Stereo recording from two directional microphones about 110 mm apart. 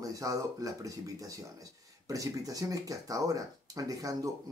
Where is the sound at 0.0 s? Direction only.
30° right (ahead or behind).